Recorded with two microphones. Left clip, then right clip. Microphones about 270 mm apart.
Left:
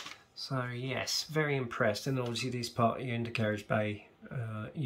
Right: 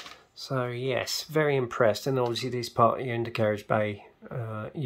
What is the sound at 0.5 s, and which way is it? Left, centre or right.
Speech, right.